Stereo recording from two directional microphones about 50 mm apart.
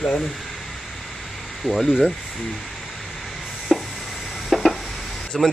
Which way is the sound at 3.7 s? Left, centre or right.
Centre.